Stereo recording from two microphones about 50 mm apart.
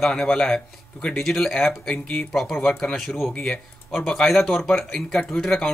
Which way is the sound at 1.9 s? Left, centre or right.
Centre.